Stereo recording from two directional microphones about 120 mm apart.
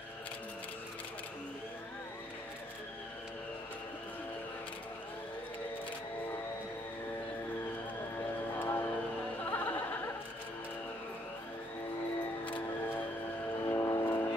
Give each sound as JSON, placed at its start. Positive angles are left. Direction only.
{"t": 8.5, "sound": "vehicle", "side_deg": 15}
{"t": 9.5, "sound": "music", "side_deg": 15}
{"t": 13.7, "sound": "vehicle", "side_deg": 25}